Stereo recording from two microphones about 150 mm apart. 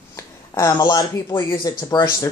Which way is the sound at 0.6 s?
20° left (ahead or behind).